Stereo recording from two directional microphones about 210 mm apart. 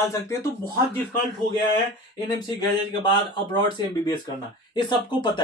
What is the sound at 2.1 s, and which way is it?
Speech, 20° left (ahead or behind).